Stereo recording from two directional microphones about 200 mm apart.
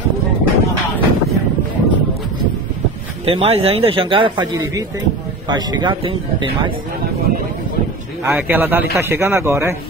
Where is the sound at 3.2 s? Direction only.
30° right (ahead or behind).